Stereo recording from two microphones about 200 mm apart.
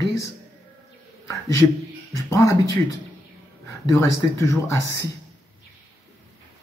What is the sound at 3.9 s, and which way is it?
Speech, 15° left (ahead or behind).